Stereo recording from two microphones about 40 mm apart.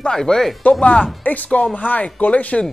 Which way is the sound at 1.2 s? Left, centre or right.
Left.